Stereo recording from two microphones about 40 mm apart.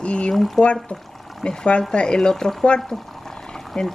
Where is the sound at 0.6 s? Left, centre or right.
Left.